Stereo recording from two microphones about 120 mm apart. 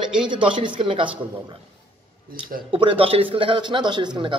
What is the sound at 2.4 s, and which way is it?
A man's voice, 45° right (ahead or behind).